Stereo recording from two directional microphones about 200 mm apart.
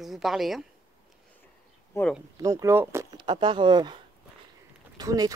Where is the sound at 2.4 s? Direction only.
15° right (ahead or behind).